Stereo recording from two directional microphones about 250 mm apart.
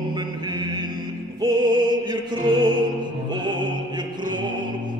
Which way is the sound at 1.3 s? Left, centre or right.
Centre.